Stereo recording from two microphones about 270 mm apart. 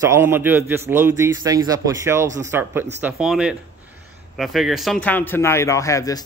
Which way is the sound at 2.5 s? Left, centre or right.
Centre.